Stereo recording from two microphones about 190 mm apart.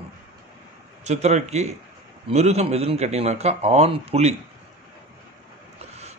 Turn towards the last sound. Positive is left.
turn(degrees=-35)  # may be behind; listen again after turning